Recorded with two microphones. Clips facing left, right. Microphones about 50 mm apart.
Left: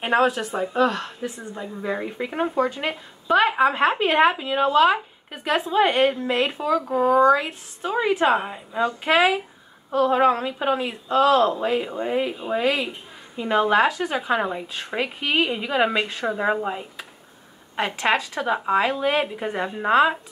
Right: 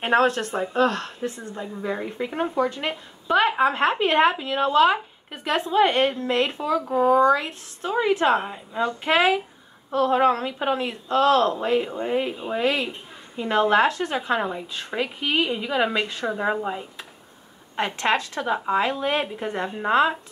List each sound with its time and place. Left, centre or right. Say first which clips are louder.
0.0 s speech: even; centre
6.8 s speech: right 3 dB; centre
7.2 s speech: left 2 dB; centre